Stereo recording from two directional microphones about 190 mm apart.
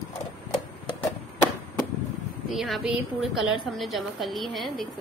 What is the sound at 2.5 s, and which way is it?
Speech, centre (ahead or behind).